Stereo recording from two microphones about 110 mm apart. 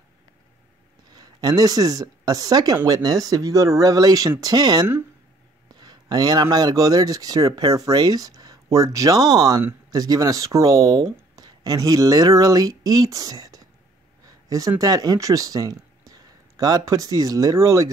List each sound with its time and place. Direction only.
1.1 s speech: 35° right (ahead or behind)
14.2 s a sound: 30° right (ahead or behind)
14.8 s speech: 35° right (ahead or behind)